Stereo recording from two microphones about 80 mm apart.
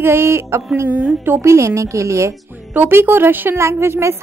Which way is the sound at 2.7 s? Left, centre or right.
Right.